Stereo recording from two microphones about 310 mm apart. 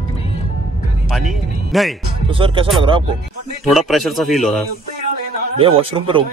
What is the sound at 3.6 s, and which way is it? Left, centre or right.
Speech, centre.